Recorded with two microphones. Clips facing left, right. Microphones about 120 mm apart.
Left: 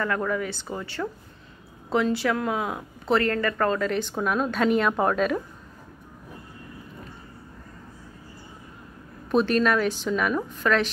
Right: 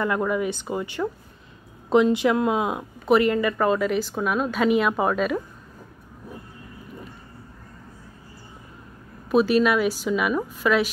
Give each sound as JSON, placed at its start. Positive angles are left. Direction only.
{"t": 0.0, "sound": "speech", "side_deg": -15}
{"t": 9.3, "sound": "speech", "side_deg": -5}